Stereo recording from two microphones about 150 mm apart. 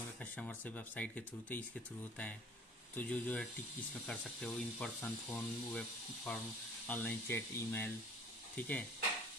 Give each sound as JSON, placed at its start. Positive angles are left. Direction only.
{"t": 0.2, "sound": "speech", "side_deg": 10}
{"t": 3.0, "sound": "speech", "side_deg": 10}